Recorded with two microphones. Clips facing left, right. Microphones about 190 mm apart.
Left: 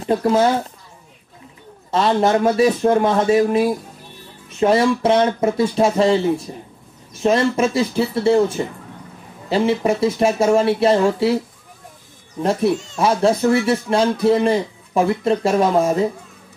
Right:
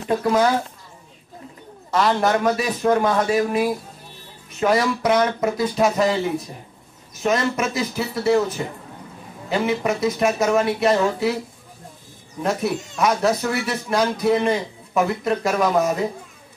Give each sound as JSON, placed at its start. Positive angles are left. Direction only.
{"t": 0.0, "sound": "speech", "side_deg": 25}
{"t": 1.9, "sound": "speech", "side_deg": 25}
{"t": 9.5, "sound": "speech", "side_deg": 30}
{"t": 12.4, "sound": "speech", "side_deg": 30}